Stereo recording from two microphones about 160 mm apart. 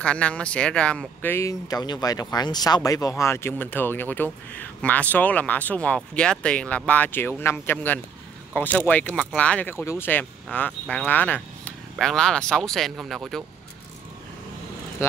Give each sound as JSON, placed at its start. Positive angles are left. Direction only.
{"t": 0.0, "sound": "speech", "side_deg": 10}